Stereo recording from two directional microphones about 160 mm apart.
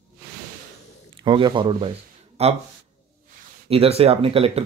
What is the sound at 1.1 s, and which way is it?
Speech, 30° right (ahead or behind).